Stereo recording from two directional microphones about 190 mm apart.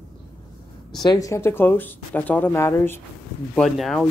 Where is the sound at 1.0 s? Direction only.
20° left (ahead or behind).